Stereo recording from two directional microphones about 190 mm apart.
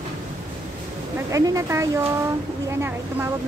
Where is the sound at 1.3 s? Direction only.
15° right (ahead or behind).